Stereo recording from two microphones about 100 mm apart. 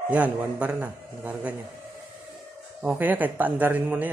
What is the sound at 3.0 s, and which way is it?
A man's voice, 15° right (ahead or behind).